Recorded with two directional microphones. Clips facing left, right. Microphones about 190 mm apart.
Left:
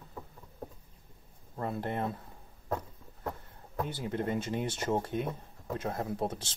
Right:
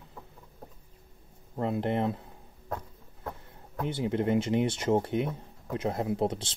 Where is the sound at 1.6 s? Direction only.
20° right (ahead or behind).